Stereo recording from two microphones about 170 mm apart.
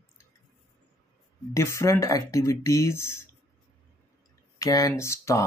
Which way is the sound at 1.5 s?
15° left (ahead or behind).